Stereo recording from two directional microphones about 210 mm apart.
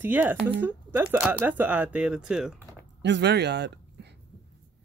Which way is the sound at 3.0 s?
55° right (ahead or behind).